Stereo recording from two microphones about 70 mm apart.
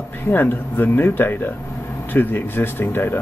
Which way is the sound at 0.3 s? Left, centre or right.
Left.